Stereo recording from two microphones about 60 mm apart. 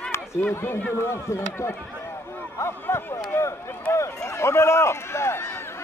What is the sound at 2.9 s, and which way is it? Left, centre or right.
A man's voice, left.